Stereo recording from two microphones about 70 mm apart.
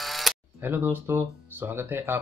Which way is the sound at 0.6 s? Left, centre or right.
Right.